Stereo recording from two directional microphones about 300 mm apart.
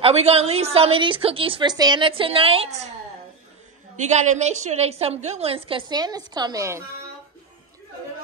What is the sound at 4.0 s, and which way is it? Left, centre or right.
A woman's voice, right.